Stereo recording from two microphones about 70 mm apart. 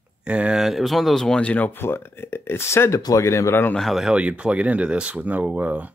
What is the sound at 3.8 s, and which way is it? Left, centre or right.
Speech, centre.